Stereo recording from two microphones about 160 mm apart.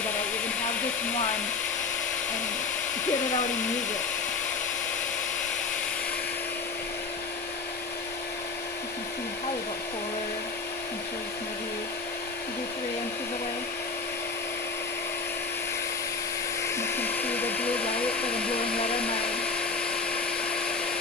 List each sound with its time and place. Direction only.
3.1 s speech: 50° left (ahead or behind)
16.6 s dental drill: 15° left (ahead or behind)